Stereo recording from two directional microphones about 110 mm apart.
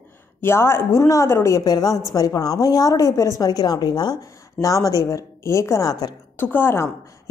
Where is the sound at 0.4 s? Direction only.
25° left (ahead or behind).